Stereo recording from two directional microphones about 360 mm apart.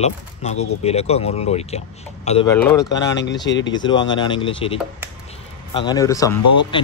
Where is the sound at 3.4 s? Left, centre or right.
Left.